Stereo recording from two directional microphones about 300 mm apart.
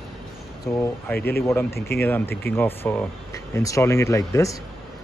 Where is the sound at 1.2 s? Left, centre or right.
Left.